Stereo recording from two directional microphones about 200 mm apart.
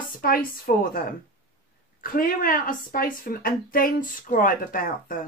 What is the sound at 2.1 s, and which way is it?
A woman's voice, 45° left (ahead or behind).